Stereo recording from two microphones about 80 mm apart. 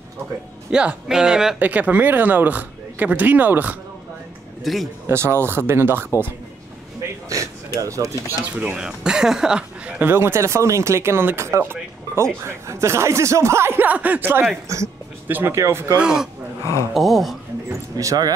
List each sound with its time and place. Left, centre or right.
0.7 s speech: centre
1.6 s speech: centre
4.7 s speech: centre
5.0 s speech: right
7.0 s a sound: right
7.8 s speech: right
8.3 s speech: right
8.7 s speech: centre
10.0 s speech: right
16.0 s speech: centre
17.9 s speech: right